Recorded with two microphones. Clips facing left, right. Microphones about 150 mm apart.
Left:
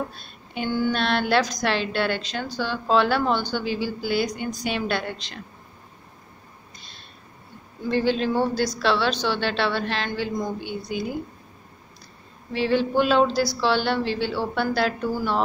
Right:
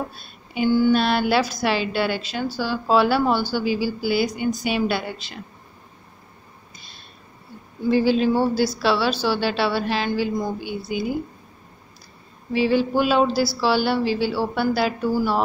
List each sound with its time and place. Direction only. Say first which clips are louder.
0.1 s a woman's voice: right 2 dB; 5° right (ahead or behind)
7.9 s a woman's voice: right 4 dB; 5° right (ahead or behind)
12.5 s a woman's voice: right 2 dB; 5° right (ahead or behind)